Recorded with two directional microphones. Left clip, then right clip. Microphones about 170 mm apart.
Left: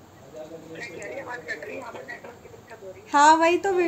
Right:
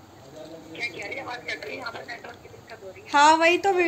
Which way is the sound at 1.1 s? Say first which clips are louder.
Right 1 dB; 20° left (ahead or behind).